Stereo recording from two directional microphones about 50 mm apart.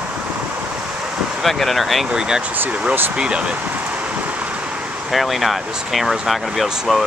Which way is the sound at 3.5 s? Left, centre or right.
Right.